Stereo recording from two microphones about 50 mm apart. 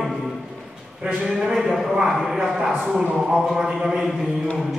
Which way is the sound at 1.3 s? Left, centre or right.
Centre.